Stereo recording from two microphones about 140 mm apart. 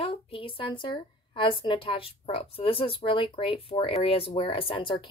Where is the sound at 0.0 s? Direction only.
40° left (ahead or behind).